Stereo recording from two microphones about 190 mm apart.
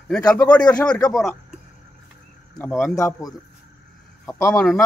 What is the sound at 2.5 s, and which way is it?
Speech, 10° left (ahead or behind).